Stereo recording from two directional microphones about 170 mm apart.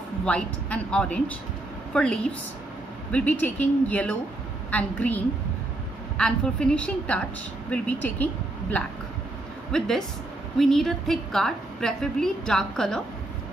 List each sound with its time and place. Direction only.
0.2 s a woman's voice: 5° left (ahead or behind)